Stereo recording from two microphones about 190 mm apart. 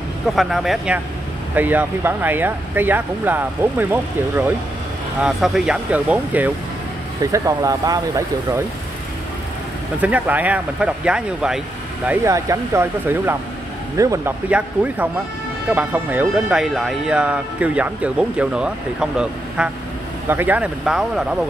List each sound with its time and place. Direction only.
0.4 s speech: centre (ahead or behind); by 8.5 s 20° right (ahead or behind)
9.9 s speech: 10° right (ahead or behind)
12.1 s speech: 15° right (ahead or behind)
14.5 s speech: 5° right (ahead or behind)